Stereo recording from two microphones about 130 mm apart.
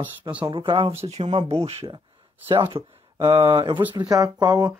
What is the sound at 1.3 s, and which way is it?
A man's voice, 45° right (ahead or behind).